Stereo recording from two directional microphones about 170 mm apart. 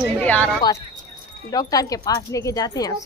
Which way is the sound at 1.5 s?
20° left (ahead or behind).